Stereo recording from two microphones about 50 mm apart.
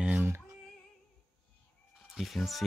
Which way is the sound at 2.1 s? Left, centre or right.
Centre.